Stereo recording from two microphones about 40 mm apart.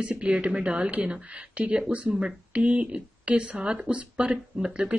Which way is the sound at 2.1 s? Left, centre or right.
Centre.